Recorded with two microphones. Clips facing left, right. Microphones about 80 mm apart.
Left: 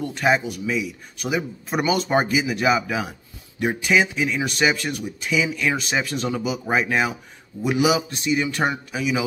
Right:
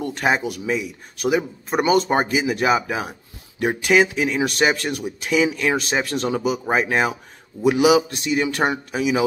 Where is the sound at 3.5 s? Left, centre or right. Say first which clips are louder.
Right 3 dB; right.